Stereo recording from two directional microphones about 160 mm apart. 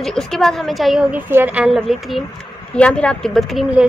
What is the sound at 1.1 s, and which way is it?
A woman's voice, 10° right (ahead or behind).